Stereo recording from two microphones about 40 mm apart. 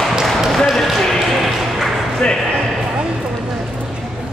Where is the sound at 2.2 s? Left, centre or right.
Left.